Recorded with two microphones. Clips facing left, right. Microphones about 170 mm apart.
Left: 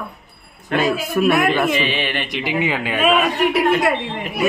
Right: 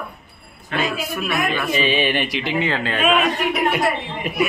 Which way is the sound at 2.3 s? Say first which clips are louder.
Left 1 dB; 10° left (ahead or behind).